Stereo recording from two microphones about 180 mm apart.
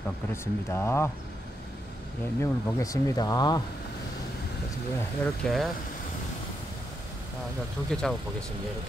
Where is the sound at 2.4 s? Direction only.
15° left (ahead or behind).